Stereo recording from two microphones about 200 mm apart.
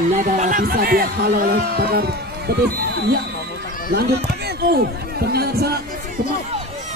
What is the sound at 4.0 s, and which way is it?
Speech, 55° right (ahead or behind).